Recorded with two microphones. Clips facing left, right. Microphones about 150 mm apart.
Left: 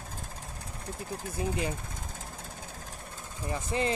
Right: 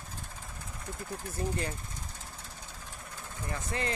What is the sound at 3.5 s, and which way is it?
Speech, 20° left (ahead or behind).